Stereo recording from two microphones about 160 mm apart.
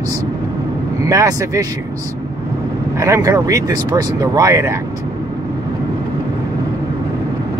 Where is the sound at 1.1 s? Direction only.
20° right (ahead or behind).